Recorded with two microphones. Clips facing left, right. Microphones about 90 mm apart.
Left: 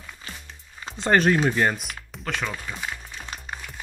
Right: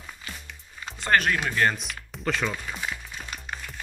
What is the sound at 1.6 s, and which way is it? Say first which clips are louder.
Speech: left 1 dB; 10° left (ahead or behind).